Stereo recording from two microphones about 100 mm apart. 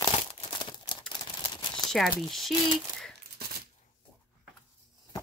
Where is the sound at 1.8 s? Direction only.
40° left (ahead or behind).